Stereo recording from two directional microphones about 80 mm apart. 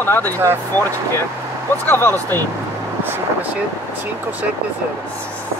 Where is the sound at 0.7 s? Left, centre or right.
Right.